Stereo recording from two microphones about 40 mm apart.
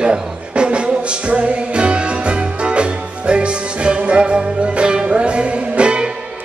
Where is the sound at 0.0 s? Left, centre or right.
Right.